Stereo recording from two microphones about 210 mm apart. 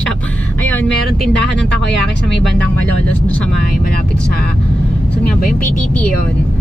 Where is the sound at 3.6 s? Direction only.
45° left (ahead or behind).